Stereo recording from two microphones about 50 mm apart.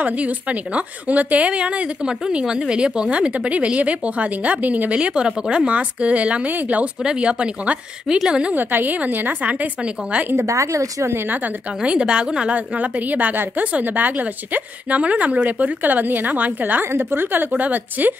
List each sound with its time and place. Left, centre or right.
0.0 s a woman's voice: right
7.0 s speech: centre
8.5 s a woman's voice: right
10.3 s speech: right
11.1 s a woman's voice: right
11.8 s speech: right
12.5 s a woman's voice: right
16.8 s a woman's voice: right
17.6 s a woman's voice: right